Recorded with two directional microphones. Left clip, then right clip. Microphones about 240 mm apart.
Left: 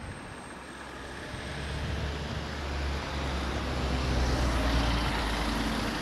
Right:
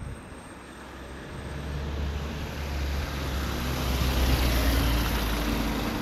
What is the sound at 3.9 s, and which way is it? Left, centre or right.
Vehicle, right.